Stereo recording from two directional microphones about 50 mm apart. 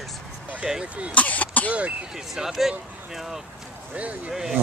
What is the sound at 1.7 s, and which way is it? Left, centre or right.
Speech, right.